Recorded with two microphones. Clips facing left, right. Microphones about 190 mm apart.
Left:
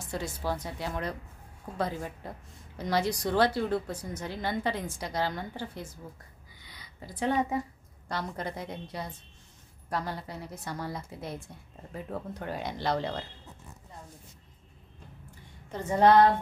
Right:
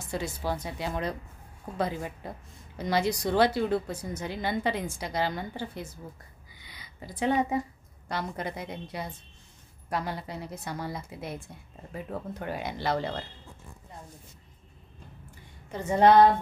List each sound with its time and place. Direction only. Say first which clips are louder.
0.1 s a woman's voice: right 1 dB; 10° right (ahead or behind)
7.0 s a woman's voice: right 2 dB; 15° right (ahead or behind)